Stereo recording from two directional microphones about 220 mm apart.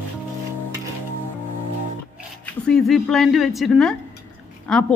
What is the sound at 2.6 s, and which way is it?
A woman's voice, 5° left (ahead or behind).